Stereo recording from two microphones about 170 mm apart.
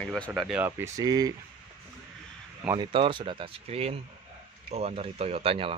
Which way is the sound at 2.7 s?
30° right (ahead or behind).